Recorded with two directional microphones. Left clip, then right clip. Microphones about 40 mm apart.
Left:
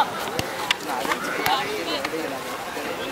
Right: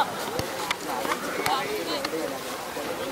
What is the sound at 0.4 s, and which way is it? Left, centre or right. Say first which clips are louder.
Run: left 6 dB; centre.